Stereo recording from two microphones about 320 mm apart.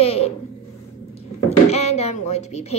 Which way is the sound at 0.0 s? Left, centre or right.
Centre.